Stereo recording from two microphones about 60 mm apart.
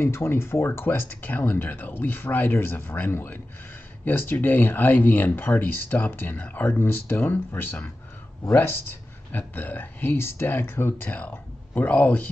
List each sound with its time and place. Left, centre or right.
0.0 s speech: left
9.5 s speech: left
11.1 s speech: left